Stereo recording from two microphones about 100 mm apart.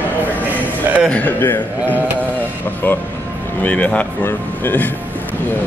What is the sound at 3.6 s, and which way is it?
Speech, 15° left (ahead or behind).